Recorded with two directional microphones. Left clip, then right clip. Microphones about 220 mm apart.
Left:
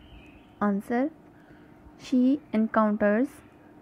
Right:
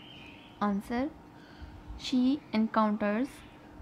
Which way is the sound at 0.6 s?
15° left (ahead or behind).